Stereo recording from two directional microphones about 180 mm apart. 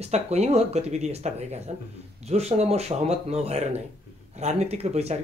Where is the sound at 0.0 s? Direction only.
40° right (ahead or behind).